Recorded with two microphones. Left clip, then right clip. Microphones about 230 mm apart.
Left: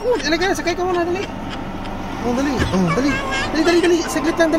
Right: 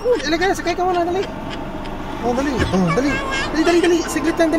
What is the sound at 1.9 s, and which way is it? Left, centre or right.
Vehicle, left.